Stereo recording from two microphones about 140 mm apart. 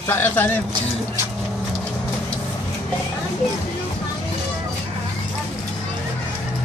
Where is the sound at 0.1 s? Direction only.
15° left (ahead or behind).